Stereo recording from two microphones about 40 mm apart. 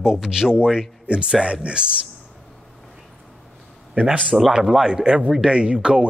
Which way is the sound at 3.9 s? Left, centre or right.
Right.